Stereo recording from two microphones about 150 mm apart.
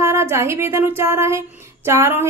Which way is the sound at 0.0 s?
15° right (ahead or behind).